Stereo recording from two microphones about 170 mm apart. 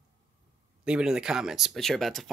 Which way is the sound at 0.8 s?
5° right (ahead or behind).